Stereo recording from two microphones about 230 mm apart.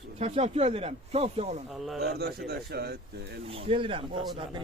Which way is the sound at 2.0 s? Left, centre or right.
Right.